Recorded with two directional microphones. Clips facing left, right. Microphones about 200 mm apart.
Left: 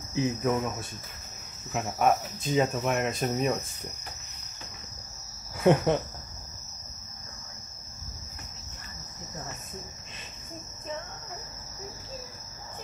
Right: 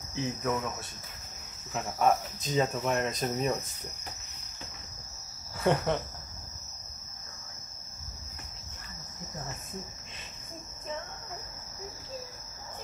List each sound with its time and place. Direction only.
0.1 s speech: 20° left (ahead or behind)
1.7 s speech: 10° left (ahead or behind)
5.6 s speech: 15° left (ahead or behind)